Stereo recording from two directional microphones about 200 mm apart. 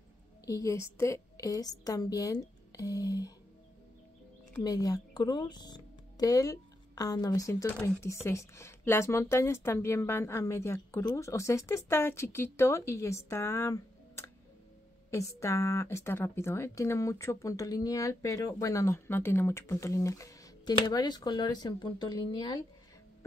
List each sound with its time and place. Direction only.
0.5 s speech: 15° left (ahead or behind)
4.6 s speech: 20° left (ahead or behind)